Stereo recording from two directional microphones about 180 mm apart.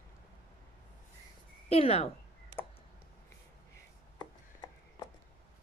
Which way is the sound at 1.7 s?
35° left (ahead or behind).